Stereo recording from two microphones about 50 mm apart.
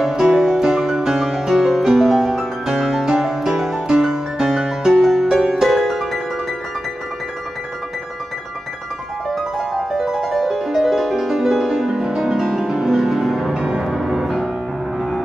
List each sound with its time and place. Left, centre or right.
0.0 s music: centre
9.3 s music: centre